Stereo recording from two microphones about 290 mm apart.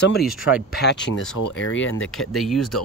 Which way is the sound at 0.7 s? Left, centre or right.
Left.